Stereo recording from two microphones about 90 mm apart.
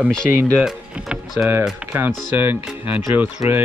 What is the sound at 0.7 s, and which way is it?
Speech, 5° right (ahead or behind).